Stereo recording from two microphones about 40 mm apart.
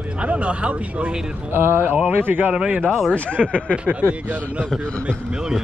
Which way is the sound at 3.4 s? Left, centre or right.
Left.